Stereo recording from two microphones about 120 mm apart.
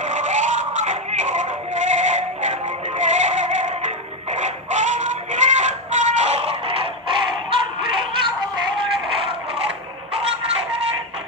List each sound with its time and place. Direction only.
0.0 s music: 90° right; by 7.6 s 45° right (ahead or behind)
8.7 s music: 45° right (ahead or behind)